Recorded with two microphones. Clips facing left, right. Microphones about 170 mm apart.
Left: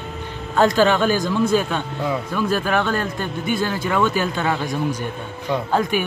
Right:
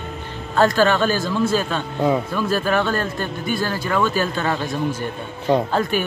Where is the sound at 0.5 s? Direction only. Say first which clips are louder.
Even; 15° left (ahead or behind).